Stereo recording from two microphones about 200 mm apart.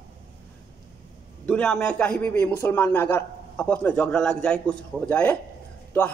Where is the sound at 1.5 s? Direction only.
5° left (ahead or behind).